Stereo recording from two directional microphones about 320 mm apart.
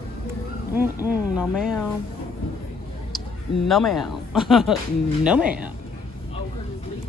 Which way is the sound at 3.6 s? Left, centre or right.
Centre.